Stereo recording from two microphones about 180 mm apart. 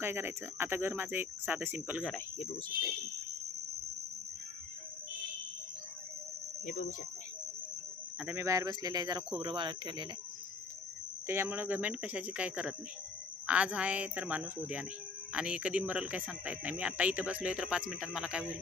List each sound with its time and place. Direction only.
0.0 s speech: 10° right (ahead or behind)
6.6 s speech: 55° left (ahead or behind)
8.2 s speech: 10° right (ahead or behind)
11.2 s speech: 15° right (ahead or behind)